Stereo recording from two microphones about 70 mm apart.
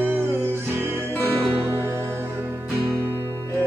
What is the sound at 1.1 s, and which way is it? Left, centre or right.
Music, left.